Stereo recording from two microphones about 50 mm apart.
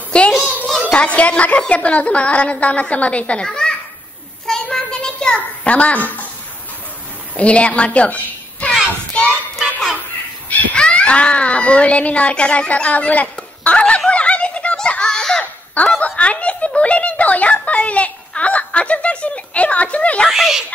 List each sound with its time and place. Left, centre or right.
0.1 s child singing: left
0.8 s speech: left
3.4 s children playing: centre
4.5 s a sound: centre; by 6.2 s left
7.3 s a woman's voice: left
9.1 s child singing: left
10.5 s speech: left
13.7 s snicker: left
14.8 s belly laugh: centre
15.8 s speech: left
16.2 s a sound: left
20.2 s a child's voice: centre